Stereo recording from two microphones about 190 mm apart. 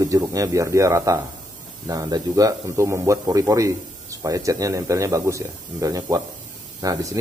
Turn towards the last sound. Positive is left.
turn(degrees=-20)  # may be behind; listen again after turning